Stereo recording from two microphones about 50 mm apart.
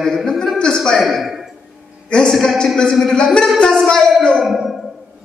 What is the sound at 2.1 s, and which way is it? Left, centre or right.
A man's voice, centre.